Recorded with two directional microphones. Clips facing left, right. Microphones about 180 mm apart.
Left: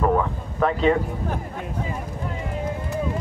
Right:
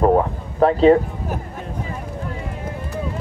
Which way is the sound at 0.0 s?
35° right (ahead or behind).